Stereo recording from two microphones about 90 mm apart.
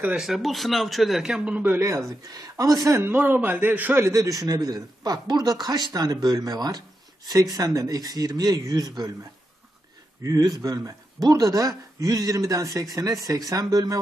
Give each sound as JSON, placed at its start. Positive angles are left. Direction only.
{"t": 0.2, "sound": "a man's voice", "side_deg": 0}
{"t": 1.8, "sound": "speech", "side_deg": -35}
{"t": 3.1, "sound": "a man's voice", "side_deg": -20}
{"t": 4.0, "sound": "a man's voice", "side_deg": -35}
{"t": 10.2, "sound": "speech", "side_deg": -45}